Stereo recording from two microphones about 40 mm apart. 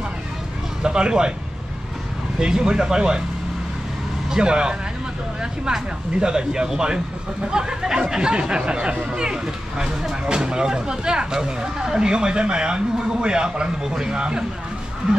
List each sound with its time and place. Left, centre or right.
0.8 s speech: right
2.3 s speech: centre
4.3 s speech: right